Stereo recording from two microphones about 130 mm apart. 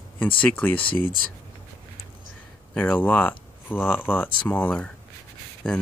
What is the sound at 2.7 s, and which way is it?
Speech, 15° left (ahead or behind).